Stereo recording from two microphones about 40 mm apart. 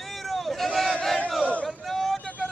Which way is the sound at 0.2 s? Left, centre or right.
Centre.